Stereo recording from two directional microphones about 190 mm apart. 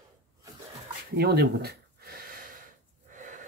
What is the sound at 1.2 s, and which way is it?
Gasp, 55° right (ahead or behind).